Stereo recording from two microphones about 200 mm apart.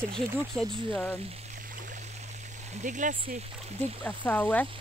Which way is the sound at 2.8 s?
40° right (ahead or behind).